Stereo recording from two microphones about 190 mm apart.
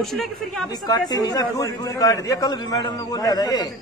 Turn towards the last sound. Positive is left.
turn(degrees=20)  # may be behind; listen again after turning